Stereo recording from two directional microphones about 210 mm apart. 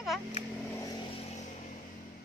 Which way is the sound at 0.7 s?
15° left (ahead or behind).